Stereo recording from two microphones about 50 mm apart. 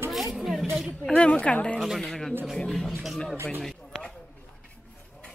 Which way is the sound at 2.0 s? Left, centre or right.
Centre.